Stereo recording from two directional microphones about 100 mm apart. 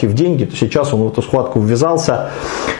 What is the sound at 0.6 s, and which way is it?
Speech, 10° left (ahead or behind).